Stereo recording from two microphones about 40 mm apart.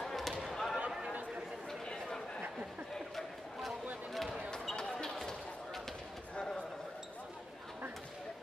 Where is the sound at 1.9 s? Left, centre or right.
Centre.